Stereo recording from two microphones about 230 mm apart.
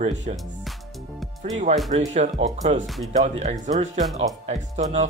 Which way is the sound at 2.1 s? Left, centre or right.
Right.